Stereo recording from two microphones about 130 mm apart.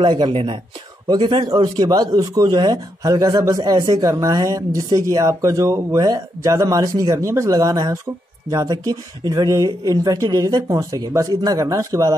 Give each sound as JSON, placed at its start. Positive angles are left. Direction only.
{"t": 0.0, "sound": "a man's voice", "side_deg": -40}